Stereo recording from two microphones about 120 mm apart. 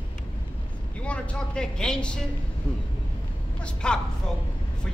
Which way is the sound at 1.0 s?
10° left (ahead or behind).